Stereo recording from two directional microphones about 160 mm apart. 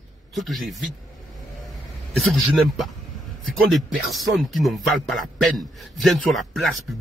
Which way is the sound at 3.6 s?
Centre (ahead or behind).